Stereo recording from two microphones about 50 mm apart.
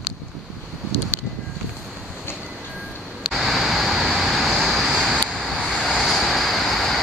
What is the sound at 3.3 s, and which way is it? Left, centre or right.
Vehicle, centre.